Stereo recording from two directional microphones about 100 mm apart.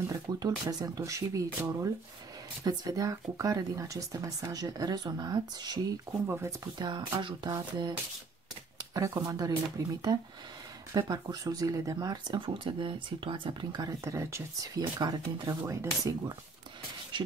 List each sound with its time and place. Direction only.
0.1 s speech: 40° right (ahead or behind)
6.2 s speech: 25° right (ahead or behind)
7.2 s speech: 50° right (ahead or behind)
8.9 s speech: 35° right (ahead or behind)
15.6 s speech: 30° right (ahead or behind)
17.1 s a sound: 50° right (ahead or behind)